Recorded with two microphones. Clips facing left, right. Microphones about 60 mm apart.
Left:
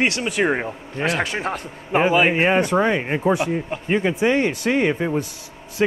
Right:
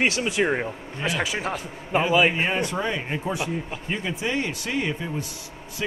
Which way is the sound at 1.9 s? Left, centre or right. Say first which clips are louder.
Left 3 dB; left.